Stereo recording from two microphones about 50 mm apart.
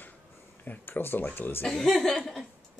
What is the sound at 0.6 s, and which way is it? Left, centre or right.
Speech, left.